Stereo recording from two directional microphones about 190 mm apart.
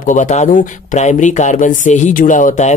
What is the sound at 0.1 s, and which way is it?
Speech, 40° left (ahead or behind).